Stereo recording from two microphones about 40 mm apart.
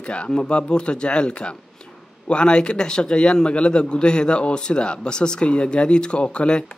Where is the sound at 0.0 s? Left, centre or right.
Left.